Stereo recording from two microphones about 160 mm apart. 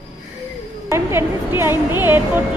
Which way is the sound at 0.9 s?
15° right (ahead or behind).